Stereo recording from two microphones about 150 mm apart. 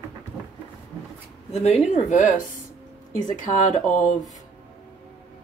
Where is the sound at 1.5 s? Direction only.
45° left (ahead or behind).